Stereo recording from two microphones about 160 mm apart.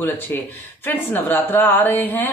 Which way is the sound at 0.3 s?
15° left (ahead or behind).